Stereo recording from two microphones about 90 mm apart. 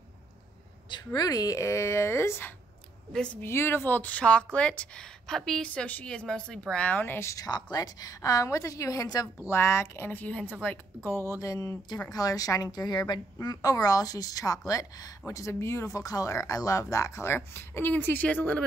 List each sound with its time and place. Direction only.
0.8 s speech: 50° left (ahead or behind); by 7.4 s 30° left (ahead or behind)
7.4 s speech: 45° left (ahead or behind)
9.5 s a woman's voice: 30° left (ahead or behind)